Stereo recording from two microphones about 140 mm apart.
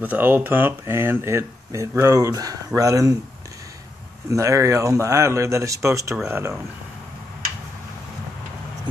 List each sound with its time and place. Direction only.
0.0 s speech: 15° right (ahead or behind)
4.3 s speech: 20° right (ahead or behind)